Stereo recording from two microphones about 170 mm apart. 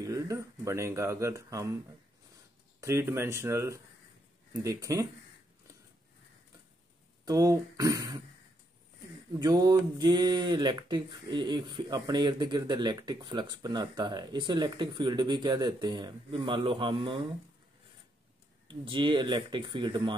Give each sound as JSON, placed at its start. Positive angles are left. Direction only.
{"t": 0.0, "sound": "speech", "side_deg": -20}
{"t": 2.8, "sound": "speech", "side_deg": -15}
{"t": 7.2, "sound": "speech", "side_deg": -20}
{"t": 9.3, "sound": "speech", "side_deg": -20}
{"t": 18.7, "sound": "speech", "side_deg": -30}